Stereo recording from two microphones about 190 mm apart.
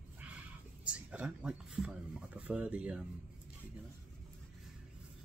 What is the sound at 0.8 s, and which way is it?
Speech, 5° right (ahead or behind).